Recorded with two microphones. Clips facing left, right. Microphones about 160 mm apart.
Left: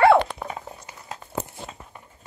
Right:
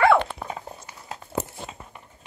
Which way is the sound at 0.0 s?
35° left (ahead or behind).